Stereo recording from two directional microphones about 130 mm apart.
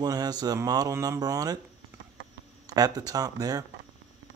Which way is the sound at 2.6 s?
30° right (ahead or behind).